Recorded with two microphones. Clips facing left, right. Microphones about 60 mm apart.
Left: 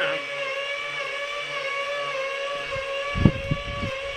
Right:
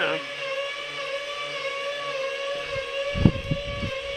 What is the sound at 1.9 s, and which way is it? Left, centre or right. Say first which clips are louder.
Vehicle: left 1 dB; left.